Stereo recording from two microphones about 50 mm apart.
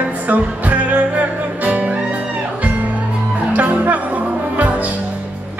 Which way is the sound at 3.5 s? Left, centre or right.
Right.